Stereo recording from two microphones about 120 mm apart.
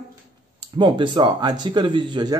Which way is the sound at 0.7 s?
40° right (ahead or behind).